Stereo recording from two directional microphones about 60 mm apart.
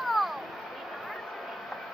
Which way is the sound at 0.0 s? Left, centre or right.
Centre.